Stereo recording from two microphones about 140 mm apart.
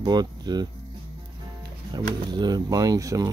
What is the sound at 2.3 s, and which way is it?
Speech, 30° right (ahead or behind).